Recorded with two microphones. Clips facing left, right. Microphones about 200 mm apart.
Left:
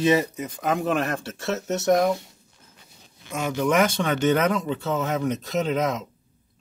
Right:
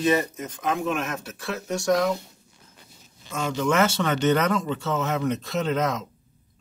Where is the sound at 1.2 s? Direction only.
25° left (ahead or behind).